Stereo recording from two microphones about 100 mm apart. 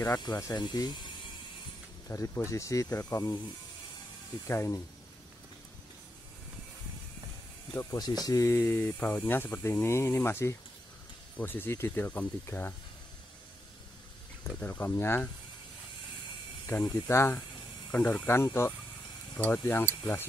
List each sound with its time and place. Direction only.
0.2 s speech: 35° left (ahead or behind)
0.6 s speech: 45° left (ahead or behind)
2.0 s speech: 35° left (ahead or behind)
4.5 s speech: 30° left (ahead or behind)
7.9 s speech: 40° left (ahead or behind); by 12.7 s 20° left (ahead or behind)
14.5 s speech: 15° left (ahead or behind)
16.6 s speech: 25° left (ahead or behind)
17.9 s speech: 15° left (ahead or behind)